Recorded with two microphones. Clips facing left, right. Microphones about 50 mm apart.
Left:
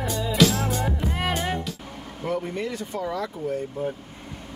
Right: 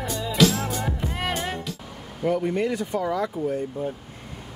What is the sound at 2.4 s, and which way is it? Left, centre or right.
Speech, centre.